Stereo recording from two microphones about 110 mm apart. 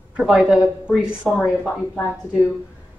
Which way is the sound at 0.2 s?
Centre (ahead or behind).